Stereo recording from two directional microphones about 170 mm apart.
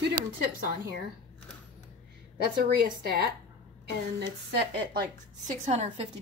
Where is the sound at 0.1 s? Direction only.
55° right (ahead or behind).